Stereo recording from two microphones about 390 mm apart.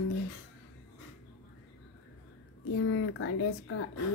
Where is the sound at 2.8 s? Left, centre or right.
Left.